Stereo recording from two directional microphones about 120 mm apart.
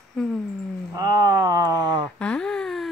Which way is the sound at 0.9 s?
30° right (ahead or behind).